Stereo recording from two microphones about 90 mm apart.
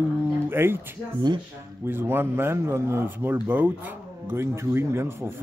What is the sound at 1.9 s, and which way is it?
Speech, 25° right (ahead or behind).